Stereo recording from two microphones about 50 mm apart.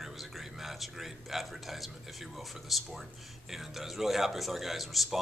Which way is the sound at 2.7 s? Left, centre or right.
Centre.